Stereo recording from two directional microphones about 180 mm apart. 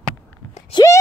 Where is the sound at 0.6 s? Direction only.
30° left (ahead or behind).